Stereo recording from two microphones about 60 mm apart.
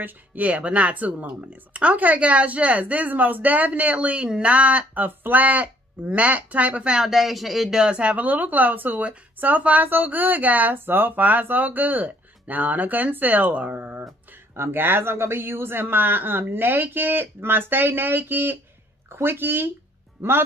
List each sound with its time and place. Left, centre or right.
0.0 s speech: right; by 7.8 s centre
7.8 s speech: centre; by 20.4 s right